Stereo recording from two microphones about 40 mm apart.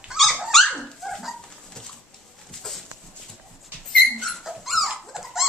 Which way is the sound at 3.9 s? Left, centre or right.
Centre.